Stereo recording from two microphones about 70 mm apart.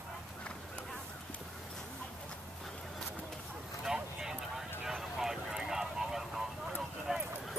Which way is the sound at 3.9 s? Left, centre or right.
Centre.